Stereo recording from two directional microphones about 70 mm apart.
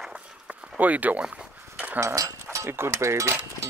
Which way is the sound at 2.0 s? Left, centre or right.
Right.